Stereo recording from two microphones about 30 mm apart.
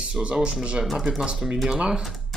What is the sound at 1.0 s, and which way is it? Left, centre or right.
Speech, centre.